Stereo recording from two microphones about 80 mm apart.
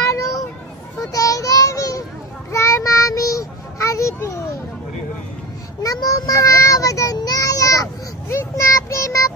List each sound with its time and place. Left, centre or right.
0.0 s children playing: left
1.1 s child singing: left
5.8 s child singing: left